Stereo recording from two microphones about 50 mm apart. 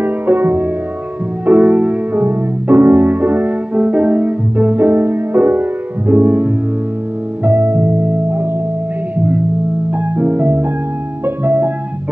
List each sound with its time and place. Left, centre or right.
0.0 s music: right
1.4 s music: right
2.2 s music: right
7.4 s music: right
9.8 s music: right